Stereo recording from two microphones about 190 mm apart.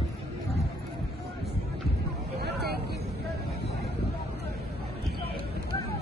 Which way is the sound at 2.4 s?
60° right (ahead or behind).